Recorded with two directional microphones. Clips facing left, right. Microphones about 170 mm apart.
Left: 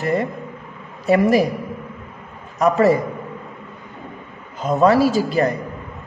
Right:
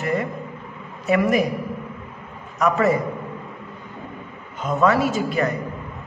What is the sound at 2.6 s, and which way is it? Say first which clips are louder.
Speech: left 4 dB; 35° left (ahead or behind).